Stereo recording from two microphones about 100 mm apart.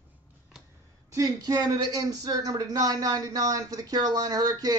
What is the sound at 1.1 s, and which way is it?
Speech, 35° right (ahead or behind).